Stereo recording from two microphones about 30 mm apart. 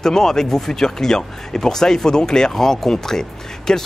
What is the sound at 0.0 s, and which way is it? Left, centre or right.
Speech, centre.